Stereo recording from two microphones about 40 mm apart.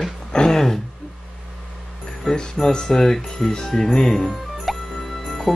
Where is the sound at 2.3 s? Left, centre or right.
Centre.